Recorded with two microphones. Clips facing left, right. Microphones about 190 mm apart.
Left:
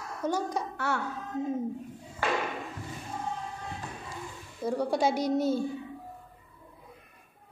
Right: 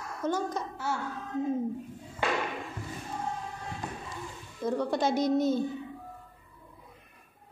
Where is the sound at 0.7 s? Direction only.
65° left (ahead or behind).